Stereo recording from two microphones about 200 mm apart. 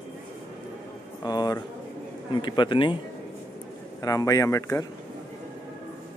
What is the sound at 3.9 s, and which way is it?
Speech, 15° left (ahead or behind).